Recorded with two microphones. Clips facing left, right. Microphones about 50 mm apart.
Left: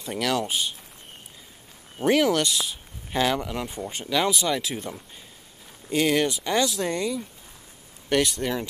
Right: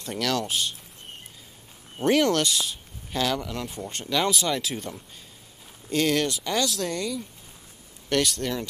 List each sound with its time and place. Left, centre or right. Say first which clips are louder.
0.0 s speech: left 1 dB; centre
2.0 s speech: left 1 dB; centre
3.1 s speech: left 3 dB; centre
3.6 s speech: left 2 dB; centre